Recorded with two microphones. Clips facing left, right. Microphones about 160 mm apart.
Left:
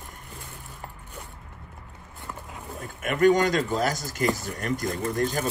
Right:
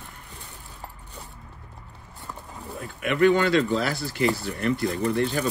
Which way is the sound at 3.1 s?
45° left (ahead or behind).